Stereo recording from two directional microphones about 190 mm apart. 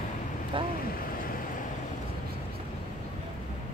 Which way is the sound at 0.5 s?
25° right (ahead or behind).